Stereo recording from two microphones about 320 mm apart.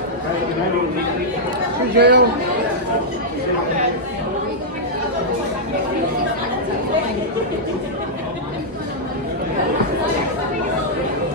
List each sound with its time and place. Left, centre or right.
2.0 s speech: right